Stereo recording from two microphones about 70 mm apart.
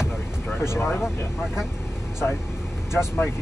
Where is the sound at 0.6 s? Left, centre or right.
Left.